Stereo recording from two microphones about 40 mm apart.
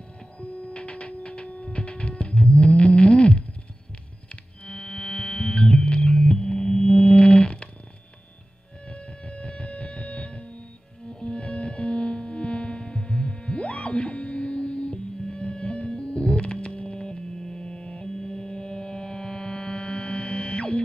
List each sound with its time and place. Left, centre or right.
0.4 s printer: left
1.2 s music: left
4.6 s music: left
8.9 s music: left